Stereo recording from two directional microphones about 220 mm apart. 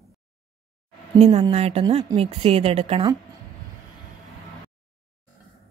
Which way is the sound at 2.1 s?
25° right (ahead or behind).